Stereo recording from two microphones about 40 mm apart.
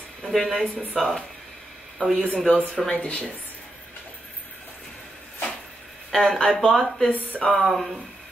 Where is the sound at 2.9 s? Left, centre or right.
Left.